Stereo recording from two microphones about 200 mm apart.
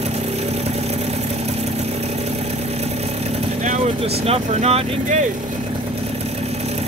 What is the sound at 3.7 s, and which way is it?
Speech, 30° right (ahead or behind).